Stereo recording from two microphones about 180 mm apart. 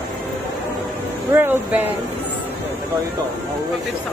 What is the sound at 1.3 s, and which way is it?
Speech, 10° right (ahead or behind).